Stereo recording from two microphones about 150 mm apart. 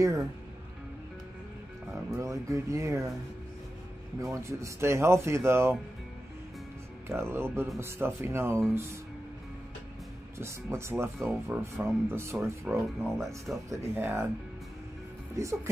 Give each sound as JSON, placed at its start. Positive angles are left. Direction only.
{"t": 0.0, "sound": "speech", "side_deg": -20}
{"t": 2.0, "sound": "speech", "side_deg": -20}
{"t": 4.2, "sound": "speech", "side_deg": -20}
{"t": 7.1, "sound": "speech", "side_deg": -15}
{"t": 10.4, "sound": "speech", "side_deg": -20}
{"t": 13.0, "sound": "speech", "side_deg": 0}
{"t": 13.7, "sound": "speech", "side_deg": -15}
{"t": 15.3, "sound": "speech", "side_deg": -20}